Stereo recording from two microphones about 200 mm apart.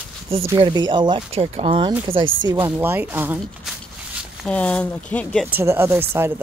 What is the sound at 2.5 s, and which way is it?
Speech, 10° right (ahead or behind).